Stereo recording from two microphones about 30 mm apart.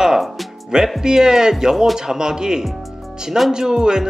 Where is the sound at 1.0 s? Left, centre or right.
Right.